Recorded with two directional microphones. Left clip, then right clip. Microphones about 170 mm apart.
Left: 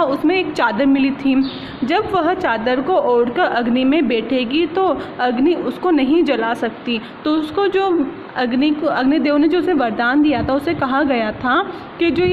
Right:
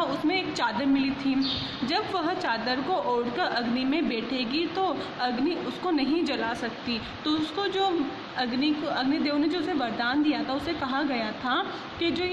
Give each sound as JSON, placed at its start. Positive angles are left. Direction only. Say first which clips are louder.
{"t": 0.0, "sound": "a woman's voice", "louder": "left 10 dB", "side_deg": 40}